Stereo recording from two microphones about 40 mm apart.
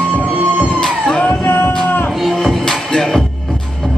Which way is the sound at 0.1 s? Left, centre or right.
Right.